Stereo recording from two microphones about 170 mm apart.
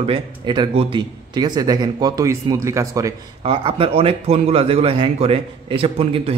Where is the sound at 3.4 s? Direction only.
35° right (ahead or behind).